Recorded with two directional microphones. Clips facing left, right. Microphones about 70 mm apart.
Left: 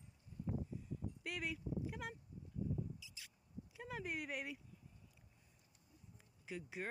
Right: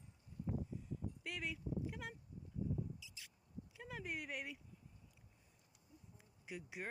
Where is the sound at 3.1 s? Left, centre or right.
Centre.